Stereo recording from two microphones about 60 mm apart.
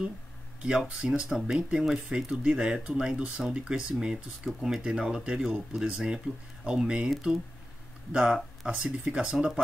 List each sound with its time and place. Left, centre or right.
0.6 s speech: centre
8.1 s speech: centre